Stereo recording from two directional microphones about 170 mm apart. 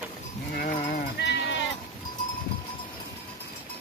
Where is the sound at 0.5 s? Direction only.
55° left (ahead or behind).